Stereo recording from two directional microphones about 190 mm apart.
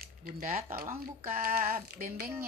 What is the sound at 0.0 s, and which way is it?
Speech, 50° right (ahead or behind).